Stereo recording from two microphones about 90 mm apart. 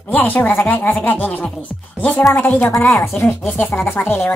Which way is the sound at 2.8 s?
35° left (ahead or behind).